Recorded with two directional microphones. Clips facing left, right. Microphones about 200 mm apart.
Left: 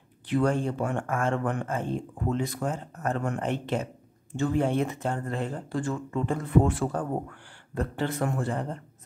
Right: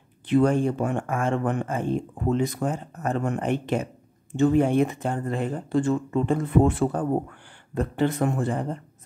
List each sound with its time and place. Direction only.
0.3 s speech: 20° right (ahead or behind)